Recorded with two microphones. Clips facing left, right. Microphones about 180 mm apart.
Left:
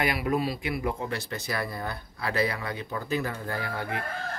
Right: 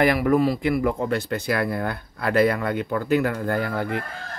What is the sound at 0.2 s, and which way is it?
Speech, 50° right (ahead or behind).